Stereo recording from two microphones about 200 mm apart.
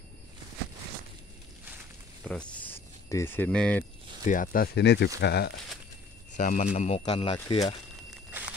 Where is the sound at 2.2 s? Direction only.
5° left (ahead or behind).